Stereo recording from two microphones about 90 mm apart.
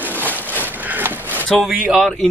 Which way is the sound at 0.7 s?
20° right (ahead or behind).